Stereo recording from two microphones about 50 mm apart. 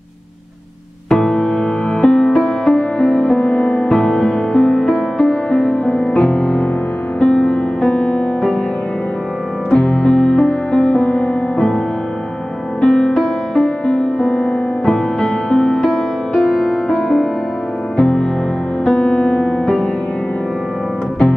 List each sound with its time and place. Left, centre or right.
1.0 s music: centre
3.0 s music: centre
4.9 s music: centre
5.3 s music: centre
5.7 s music: left
6.1 s music: centre
7.2 s music: centre
9.7 s music: centre
12.8 s music: centre
14.9 s music: centre